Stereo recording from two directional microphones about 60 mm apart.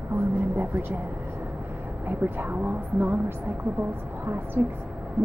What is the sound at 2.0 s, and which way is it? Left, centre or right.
Speech, right.